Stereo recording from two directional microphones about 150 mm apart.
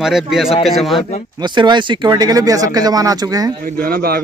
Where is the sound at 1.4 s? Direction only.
30° right (ahead or behind).